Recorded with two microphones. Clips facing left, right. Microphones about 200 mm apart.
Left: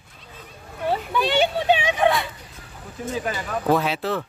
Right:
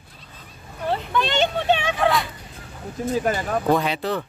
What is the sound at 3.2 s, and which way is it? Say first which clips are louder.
Speech: right 5 dB; 50° right (ahead or behind).